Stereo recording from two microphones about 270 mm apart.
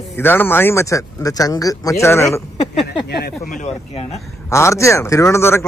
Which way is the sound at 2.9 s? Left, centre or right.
Left.